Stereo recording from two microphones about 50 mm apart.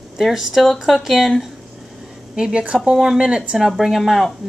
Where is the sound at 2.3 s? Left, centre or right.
Centre.